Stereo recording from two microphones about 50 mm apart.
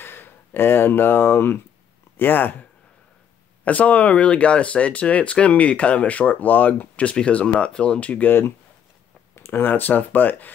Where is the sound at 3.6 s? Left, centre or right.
Left.